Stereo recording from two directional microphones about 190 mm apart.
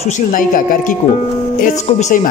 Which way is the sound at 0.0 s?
45° left (ahead or behind).